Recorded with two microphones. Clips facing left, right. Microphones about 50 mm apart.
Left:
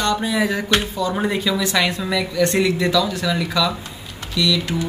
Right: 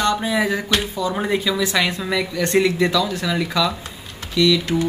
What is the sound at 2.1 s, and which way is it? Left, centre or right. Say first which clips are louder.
Speech: right 1 dB; centre.